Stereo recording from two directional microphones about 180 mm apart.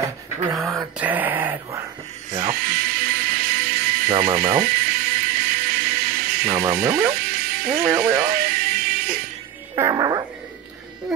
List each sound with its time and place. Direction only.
0.6 s speech: centre (ahead or behind)
2.3 s music: 50° right (ahead or behind)
7.7 s speech: 10° right (ahead or behind)
8.0 s music: 55° right (ahead or behind)
9.8 s a woman's voice: 20° right (ahead or behind)
11.1 s music: centre (ahead or behind)